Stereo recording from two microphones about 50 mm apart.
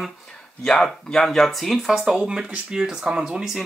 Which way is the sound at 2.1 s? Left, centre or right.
Centre.